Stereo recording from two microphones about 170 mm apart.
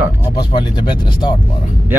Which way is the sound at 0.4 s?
30° left (ahead or behind).